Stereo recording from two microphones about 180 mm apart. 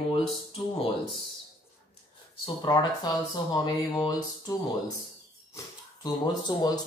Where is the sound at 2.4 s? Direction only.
25° left (ahead or behind).